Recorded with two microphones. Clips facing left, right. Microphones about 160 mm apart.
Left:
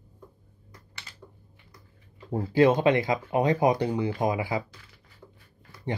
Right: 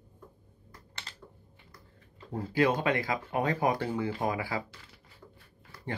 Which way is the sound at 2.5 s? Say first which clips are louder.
Left 7 dB; 25° left (ahead or behind).